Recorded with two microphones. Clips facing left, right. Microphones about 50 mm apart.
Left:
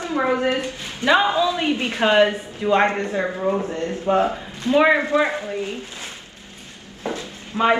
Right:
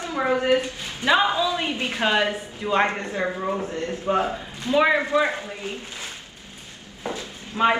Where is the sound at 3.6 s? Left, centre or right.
Left.